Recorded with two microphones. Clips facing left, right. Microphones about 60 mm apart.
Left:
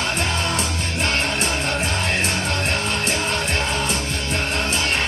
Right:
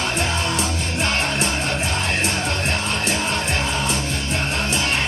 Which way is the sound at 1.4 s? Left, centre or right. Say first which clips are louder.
Even; left.